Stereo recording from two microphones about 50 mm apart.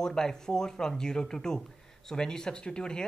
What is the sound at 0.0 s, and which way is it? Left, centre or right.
Speech, centre.